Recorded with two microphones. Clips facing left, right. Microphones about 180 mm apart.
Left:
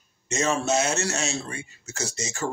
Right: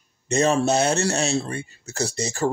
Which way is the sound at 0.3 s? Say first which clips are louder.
Right 5 dB; 35° right (ahead or behind).